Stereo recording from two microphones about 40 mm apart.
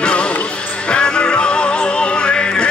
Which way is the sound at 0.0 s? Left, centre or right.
Left.